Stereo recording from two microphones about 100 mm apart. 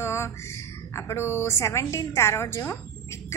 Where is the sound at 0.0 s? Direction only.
25° left (ahead or behind).